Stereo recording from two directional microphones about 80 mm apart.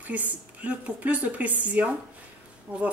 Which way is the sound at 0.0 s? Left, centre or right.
Centre.